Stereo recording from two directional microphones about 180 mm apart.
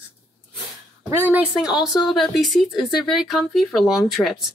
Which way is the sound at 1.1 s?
10° right (ahead or behind).